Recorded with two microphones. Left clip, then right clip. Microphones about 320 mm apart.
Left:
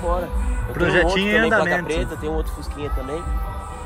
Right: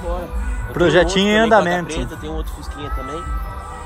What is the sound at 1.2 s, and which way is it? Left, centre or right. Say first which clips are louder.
Speech: right 4 dB; centre.